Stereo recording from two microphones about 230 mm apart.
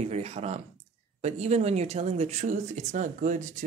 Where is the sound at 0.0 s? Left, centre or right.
Right.